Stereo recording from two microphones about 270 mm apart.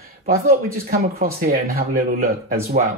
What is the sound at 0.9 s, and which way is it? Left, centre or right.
Speech, right.